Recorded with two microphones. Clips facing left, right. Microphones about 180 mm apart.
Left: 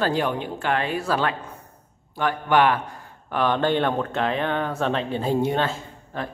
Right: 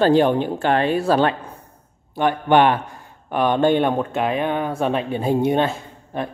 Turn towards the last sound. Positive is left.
turn(degrees=-20)  # may be behind; listen again after turning